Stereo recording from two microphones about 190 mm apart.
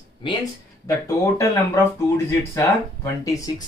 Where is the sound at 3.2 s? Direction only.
20° left (ahead or behind).